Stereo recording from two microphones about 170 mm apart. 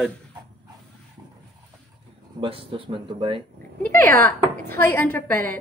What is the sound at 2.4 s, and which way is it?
Speech, 30° right (ahead or behind).